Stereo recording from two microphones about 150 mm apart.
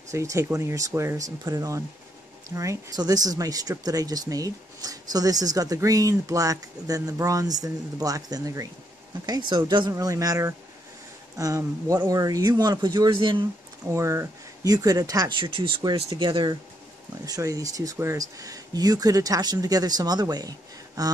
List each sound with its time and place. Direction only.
0.1 s speech: 20° right (ahead or behind)
13.8 s speech: 20° right (ahead or behind)